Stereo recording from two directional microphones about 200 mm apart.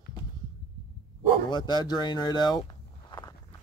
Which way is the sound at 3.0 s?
20° left (ahead or behind).